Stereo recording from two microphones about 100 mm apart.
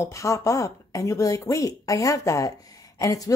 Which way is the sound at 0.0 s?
30° left (ahead or behind).